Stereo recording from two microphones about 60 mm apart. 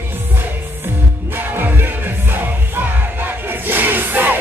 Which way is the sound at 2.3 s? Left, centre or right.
Right.